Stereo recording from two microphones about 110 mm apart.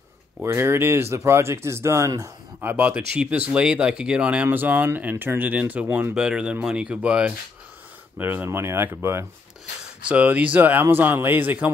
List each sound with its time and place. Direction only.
0.4 s speech: 20° right (ahead or behind)
2.7 s speech: 15° right (ahead or behind)
6.1 s speech: 5° right (ahead or behind)